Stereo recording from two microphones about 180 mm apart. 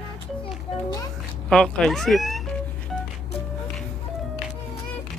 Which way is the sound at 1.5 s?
Centre (ahead or behind).